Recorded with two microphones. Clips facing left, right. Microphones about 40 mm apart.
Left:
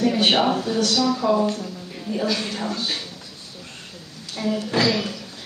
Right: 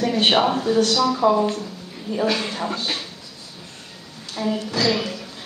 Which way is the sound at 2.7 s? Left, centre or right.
Right.